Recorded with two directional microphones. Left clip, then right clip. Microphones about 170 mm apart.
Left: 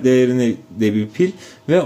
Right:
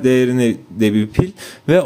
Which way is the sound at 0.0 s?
30° right (ahead or behind).